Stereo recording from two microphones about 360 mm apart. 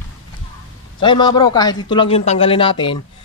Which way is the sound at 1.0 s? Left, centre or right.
Centre.